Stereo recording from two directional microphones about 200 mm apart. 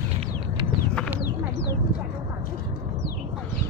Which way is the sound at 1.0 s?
5° left (ahead or behind).